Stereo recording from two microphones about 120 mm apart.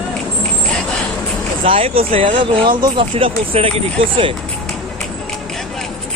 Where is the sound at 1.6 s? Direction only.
50° right (ahead or behind).